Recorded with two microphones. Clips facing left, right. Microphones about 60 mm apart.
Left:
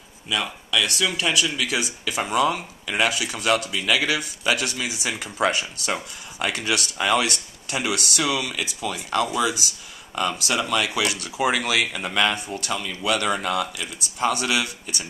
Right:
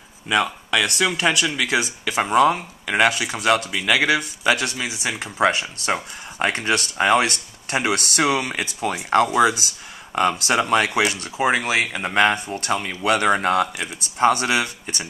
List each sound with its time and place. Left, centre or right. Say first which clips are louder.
0.7 s speech: right 3 dB; right
1.2 s speech: right 3 dB; right